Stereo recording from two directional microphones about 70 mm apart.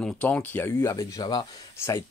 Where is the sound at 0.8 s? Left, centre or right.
Left.